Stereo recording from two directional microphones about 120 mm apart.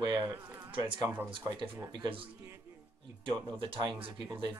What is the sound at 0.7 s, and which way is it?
Speech, 40° right (ahead or behind).